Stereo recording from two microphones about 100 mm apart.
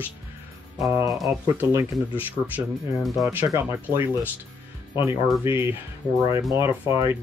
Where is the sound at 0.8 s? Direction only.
30° right (ahead or behind).